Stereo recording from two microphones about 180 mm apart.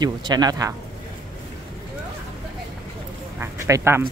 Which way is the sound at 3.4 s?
15° right (ahead or behind).